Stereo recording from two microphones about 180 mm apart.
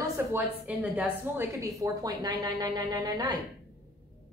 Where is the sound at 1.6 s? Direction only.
20° right (ahead or behind).